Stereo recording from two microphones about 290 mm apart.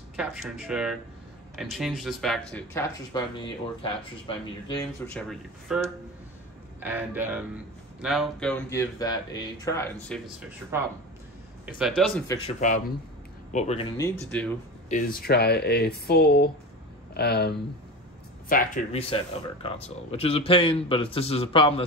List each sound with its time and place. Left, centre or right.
0.1 s a man's voice: centre
5.1 s a man's voice: centre
6.8 s a man's voice: centre
10.7 s a man's voice: centre
12.3 s speech: centre
14.9 s speech: left